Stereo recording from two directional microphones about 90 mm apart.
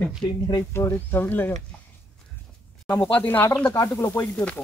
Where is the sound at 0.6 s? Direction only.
30° left (ahead or behind).